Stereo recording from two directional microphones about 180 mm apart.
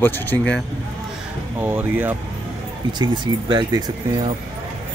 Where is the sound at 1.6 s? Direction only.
10° right (ahead or behind).